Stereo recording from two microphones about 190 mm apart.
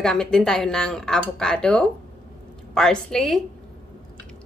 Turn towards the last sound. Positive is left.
turn(degrees=0)  # may be behind; listen again after turning